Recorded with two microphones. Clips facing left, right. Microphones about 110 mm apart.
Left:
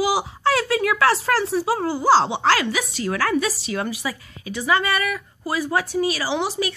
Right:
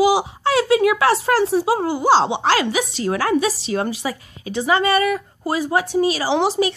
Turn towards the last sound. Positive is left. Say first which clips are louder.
# right 6 dB
turn(degrees=-25)  # may be behind; listen again after turning